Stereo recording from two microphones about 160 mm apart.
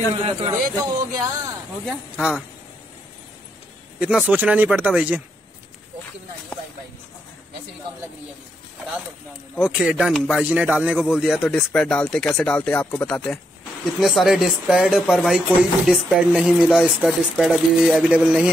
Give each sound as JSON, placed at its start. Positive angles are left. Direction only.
{"t": 0.2, "sound": "speech", "side_deg": -30}
{"t": 1.9, "sound": "speech", "side_deg": 0}
{"t": 4.0, "sound": "speech", "side_deg": -5}
{"t": 9.6, "sound": "speech", "side_deg": -5}